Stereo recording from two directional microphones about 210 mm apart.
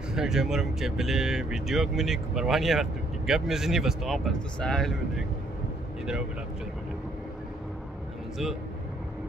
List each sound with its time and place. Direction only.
0.1 s speech: centre (ahead or behind)